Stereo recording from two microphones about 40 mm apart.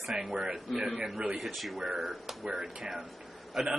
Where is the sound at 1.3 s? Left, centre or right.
Centre.